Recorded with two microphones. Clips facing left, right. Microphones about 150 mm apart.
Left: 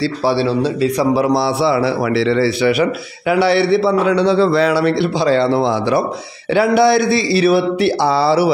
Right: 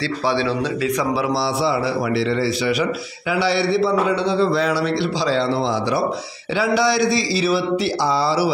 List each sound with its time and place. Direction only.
0.3 s a man's voice: 30° left (ahead or behind); by 8.5 s 65° left (ahead or behind)